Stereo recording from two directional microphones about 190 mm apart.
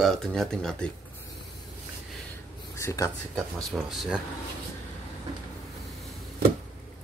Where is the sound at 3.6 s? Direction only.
Centre (ahead or behind).